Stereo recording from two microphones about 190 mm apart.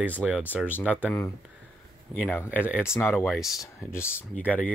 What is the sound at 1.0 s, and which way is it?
Speech, 10° left (ahead or behind).